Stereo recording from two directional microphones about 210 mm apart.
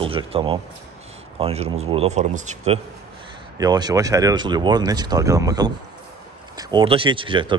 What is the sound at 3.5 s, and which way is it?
A man's voice, 20° right (ahead or behind).